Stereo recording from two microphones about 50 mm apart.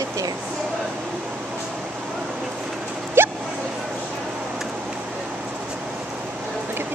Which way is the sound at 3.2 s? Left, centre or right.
Right.